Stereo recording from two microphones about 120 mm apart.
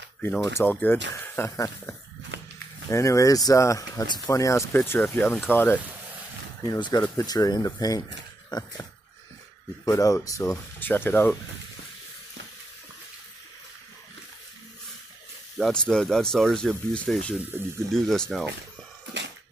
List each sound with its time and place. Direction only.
0.2 s speech: 10° left (ahead or behind)
2.9 s speech: 25° left (ahead or behind)
4.7 s speech: 15° left (ahead or behind)
6.6 s speech: 35° left (ahead or behind)
9.8 s speech: 30° left (ahead or behind)
15.5 s speech: 5° left (ahead or behind)